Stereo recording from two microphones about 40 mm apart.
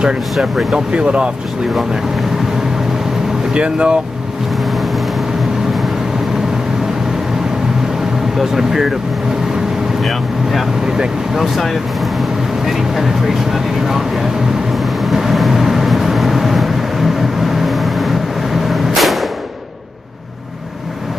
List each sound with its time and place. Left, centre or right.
0.0 s speech: right
3.5 s speech: right
8.4 s speech: centre
10.0 s speech: centre
14.7 s vehicle: centre